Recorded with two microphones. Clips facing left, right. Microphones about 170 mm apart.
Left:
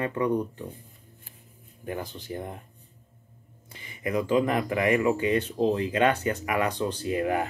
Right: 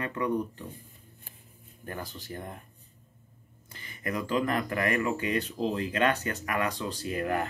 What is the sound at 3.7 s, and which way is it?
Speech, 15° left (ahead or behind).